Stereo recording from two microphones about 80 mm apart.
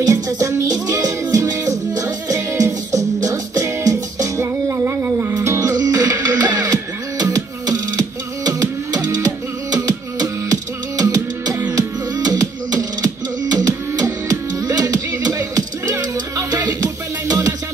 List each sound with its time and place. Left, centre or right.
0.0 s music: right